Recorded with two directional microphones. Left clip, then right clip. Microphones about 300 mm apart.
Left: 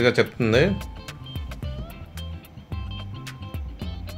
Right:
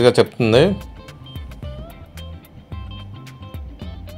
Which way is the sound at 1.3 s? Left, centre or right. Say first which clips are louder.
Right 1 dB; centre.